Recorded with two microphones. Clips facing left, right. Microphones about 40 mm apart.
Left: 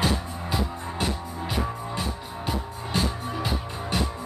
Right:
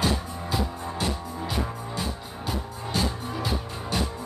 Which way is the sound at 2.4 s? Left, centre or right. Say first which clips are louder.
Left 1 dB; left.